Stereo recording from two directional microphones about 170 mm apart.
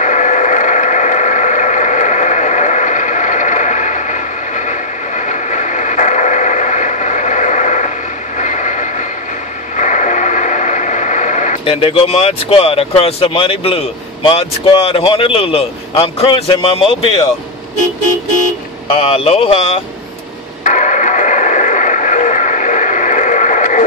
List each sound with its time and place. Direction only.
0.0 s a sound: 45° left (ahead or behind)
8.4 s vehicle: 45° left (ahead or behind)
9.8 s train: 45° left (ahead or behind)
11.6 s speech: 35° left (ahead or behind)
18.9 s speech: 35° left (ahead or behind)
20.6 s radio: 45° left (ahead or behind)